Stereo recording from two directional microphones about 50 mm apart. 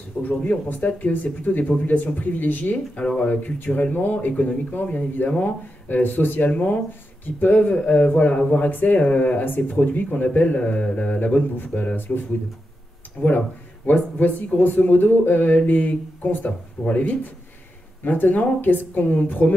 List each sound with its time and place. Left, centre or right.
0.2 s speech: left
3.0 s a man's voice: centre
3.5 s speech: left
4.3 s a man's voice: left
5.4 s speech: left
7.7 s a man's voice: left
8.6 s a man's voice: left
9.4 s a man's voice: left